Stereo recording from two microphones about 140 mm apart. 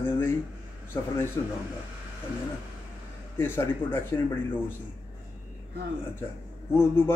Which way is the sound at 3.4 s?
15° left (ahead or behind).